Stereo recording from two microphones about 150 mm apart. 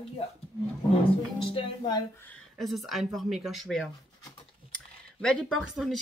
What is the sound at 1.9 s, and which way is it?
Speech, 15° left (ahead or behind).